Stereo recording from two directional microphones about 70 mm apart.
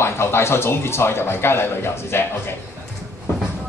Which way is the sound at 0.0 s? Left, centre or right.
Left.